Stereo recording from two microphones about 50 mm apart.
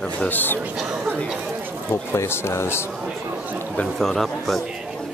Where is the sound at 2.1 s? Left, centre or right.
Left.